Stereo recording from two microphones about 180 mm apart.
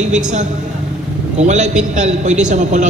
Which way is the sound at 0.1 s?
40° right (ahead or behind).